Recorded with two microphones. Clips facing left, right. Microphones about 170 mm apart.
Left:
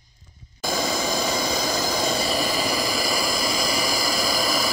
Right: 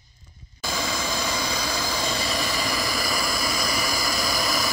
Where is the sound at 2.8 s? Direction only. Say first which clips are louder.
Left 3 dB; 10° left (ahead or behind).